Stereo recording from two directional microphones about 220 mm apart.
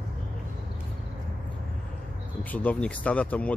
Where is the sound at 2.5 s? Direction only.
5° left (ahead or behind).